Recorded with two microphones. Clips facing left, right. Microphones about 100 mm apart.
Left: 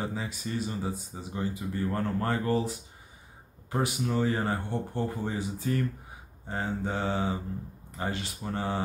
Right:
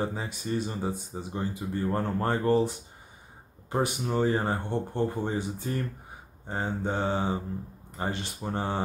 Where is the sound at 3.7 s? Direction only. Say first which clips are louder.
Right 1 dB; 25° right (ahead or behind).